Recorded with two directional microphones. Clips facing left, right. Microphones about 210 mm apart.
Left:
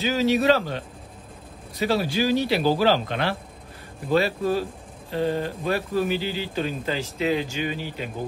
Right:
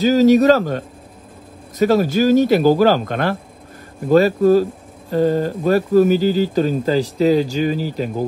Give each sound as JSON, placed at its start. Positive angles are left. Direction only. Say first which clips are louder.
{"t": 0.0, "sound": "speech", "louder": "right 9 dB", "side_deg": -45}